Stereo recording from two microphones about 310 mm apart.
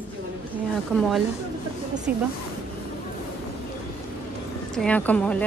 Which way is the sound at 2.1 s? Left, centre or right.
Centre.